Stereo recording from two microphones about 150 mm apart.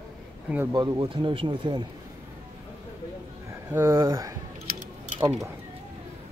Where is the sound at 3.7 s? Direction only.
20° right (ahead or behind).